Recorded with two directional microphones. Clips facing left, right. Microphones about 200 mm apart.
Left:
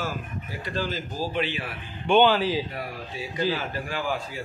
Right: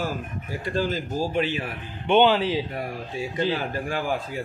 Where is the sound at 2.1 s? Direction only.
25° right (ahead or behind).